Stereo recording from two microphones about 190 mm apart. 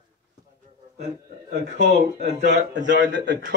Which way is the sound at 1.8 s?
55° right (ahead or behind).